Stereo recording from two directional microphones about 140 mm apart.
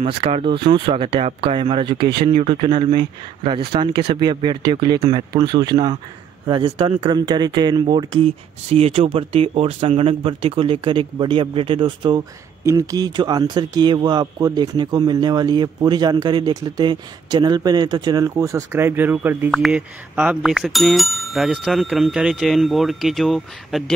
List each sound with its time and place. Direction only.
0.0 s speech: 45° right (ahead or behind)
12.6 s speech: 25° right (ahead or behind); by 23.8 s centre (ahead or behind)